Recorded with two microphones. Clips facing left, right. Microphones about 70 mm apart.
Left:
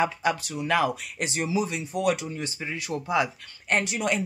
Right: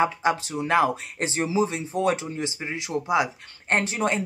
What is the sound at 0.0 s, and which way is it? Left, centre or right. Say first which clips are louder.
Speech: right 3 dB; right.